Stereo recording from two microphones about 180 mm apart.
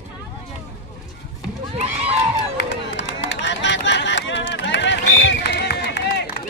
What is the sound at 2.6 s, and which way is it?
Run, 75° left (ahead or behind).